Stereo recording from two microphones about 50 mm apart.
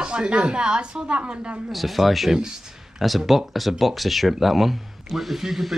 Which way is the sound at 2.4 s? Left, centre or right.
Centre.